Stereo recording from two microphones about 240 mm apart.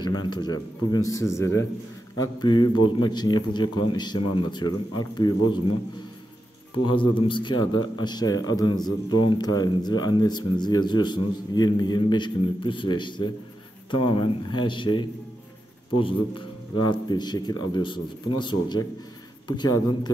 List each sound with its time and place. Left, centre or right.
0.0 s speech: centre
6.9 s a man's voice: left